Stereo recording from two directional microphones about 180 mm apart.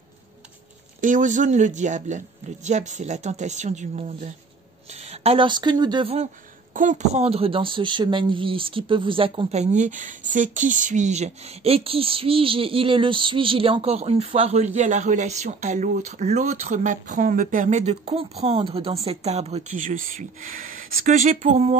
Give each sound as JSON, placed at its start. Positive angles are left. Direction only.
{"t": 1.0, "sound": "a woman's voice", "side_deg": -45}
{"t": 5.1, "sound": "speech", "side_deg": -35}
{"t": 6.7, "sound": "a woman's voice", "side_deg": -45}